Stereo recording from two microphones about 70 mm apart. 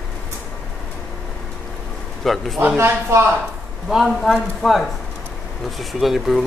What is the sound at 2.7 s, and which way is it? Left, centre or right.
Speech, right.